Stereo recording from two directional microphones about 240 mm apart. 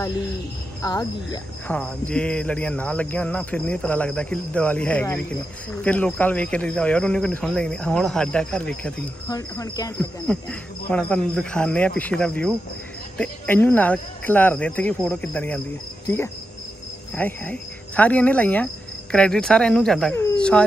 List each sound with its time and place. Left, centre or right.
0.8 s speech: centre
1.8 s speech: centre
9.3 s speech: centre
17.1 s speech: centre